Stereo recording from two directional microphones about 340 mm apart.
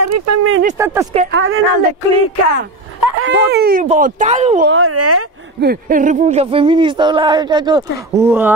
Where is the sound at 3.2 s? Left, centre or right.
Right.